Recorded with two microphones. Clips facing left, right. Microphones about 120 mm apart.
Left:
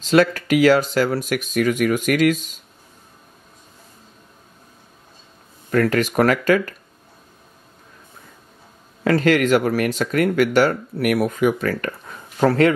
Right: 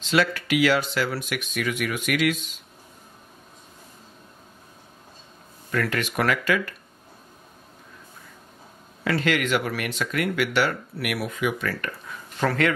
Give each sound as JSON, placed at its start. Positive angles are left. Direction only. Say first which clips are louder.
{"t": 0.0, "sound": "speech", "louder": "left 7 dB", "side_deg": 40}
{"t": 5.7, "sound": "speech", "louder": "left 8 dB", "side_deg": 40}
{"t": 9.0, "sound": "speech", "louder": "left 7 dB", "side_deg": 45}